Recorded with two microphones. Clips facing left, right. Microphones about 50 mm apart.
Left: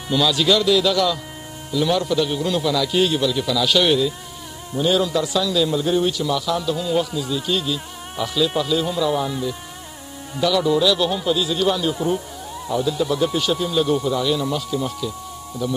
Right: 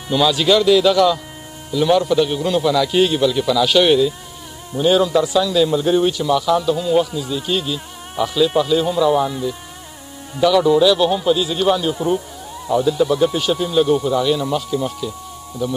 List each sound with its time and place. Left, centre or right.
0.1 s a man's voice: centre